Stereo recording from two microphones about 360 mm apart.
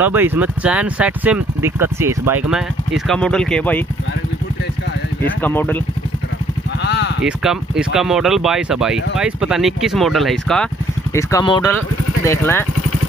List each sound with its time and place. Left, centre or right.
0.0 s speech: centre
5.4 s speech: centre
6.8 s a sound: left
7.2 s speech: centre